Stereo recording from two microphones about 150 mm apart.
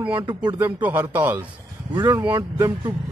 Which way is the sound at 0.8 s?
10° right (ahead or behind).